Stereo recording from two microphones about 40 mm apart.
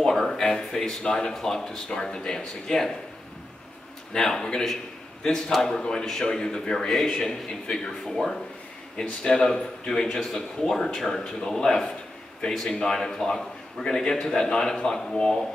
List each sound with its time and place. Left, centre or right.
0.1 s a sound: centre
1.3 s a man's voice: centre
4.1 s a man's voice: centre
5.5 s a man's voice: centre
5.8 s a man's voice: centre
6.9 s a man's voice: centre